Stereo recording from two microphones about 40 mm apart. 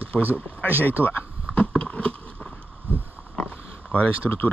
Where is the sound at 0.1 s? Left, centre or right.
Left.